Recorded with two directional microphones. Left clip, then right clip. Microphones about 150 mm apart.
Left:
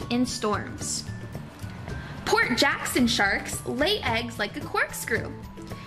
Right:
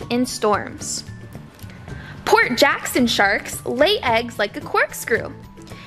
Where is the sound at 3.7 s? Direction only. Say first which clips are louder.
Right 10 dB; 65° right (ahead or behind).